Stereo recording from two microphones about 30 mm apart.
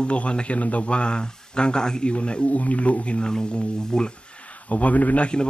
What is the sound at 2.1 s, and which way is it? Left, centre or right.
Speech, left.